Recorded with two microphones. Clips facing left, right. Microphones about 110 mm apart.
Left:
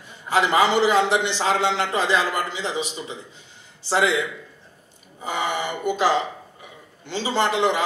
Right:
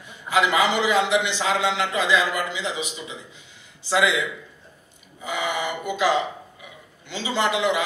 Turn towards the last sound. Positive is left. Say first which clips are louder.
# left 1 dB
turn(degrees=35)  # may be behind; listen again after turning